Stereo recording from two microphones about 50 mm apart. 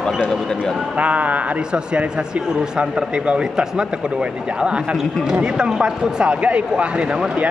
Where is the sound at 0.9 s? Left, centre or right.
Right.